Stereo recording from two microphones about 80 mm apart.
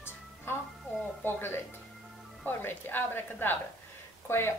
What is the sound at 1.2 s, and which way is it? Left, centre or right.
A woman's voice, left.